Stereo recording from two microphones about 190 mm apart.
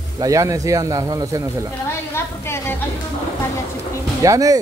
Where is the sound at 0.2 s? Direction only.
15° right (ahead or behind).